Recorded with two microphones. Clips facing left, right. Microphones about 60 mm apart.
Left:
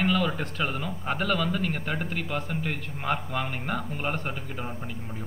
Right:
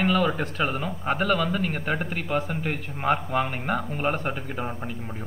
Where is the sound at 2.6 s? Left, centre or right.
Right.